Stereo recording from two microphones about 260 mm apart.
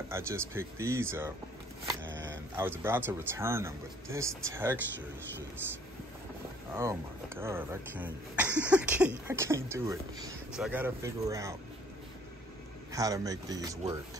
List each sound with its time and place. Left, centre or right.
0.1 s speech: centre
2.0 s single-lens reflex camera: right
2.5 s speech: centre
6.7 s speech: centre
12.9 s speech: centre